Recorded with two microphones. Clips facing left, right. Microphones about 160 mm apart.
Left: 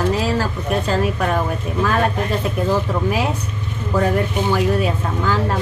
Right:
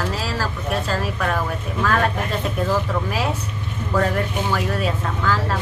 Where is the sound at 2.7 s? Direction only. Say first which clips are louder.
Left 5 dB; 15° left (ahead or behind).